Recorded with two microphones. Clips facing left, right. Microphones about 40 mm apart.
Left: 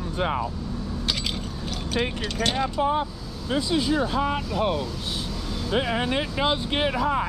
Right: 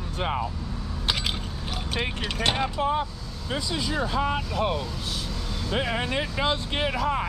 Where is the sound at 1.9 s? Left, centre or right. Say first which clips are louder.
Left 3 dB; centre.